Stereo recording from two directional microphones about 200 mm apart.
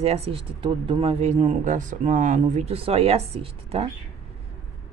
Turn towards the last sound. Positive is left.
turn(degrees=-30)  # may be behind; listen again after turning